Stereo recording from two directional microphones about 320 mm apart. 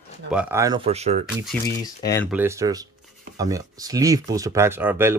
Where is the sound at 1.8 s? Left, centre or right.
Centre.